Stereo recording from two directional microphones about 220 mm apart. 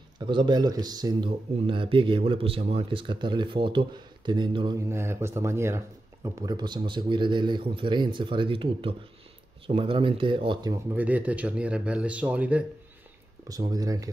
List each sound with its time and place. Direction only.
0.3 s speech: 20° right (ahead or behind)
13.5 s speech: 15° right (ahead or behind)